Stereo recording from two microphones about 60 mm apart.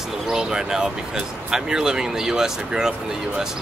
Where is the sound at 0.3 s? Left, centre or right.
Centre.